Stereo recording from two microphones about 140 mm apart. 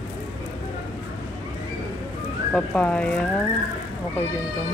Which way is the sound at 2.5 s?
10° left (ahead or behind).